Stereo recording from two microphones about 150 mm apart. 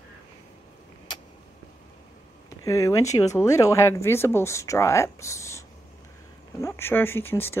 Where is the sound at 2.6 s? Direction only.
20° left (ahead or behind).